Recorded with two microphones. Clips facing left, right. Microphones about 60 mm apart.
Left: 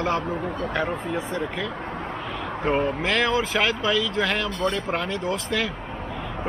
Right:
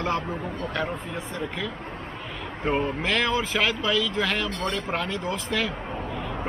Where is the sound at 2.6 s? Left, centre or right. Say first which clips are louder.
Left 2 dB; centre.